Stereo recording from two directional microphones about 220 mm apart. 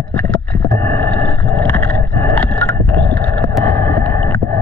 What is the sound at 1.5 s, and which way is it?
Horse, 10° left (ahead or behind).